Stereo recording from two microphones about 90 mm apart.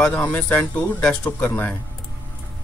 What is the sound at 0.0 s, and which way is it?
Speech, 15° left (ahead or behind).